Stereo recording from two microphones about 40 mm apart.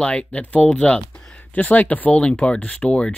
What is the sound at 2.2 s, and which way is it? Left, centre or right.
Speech, left.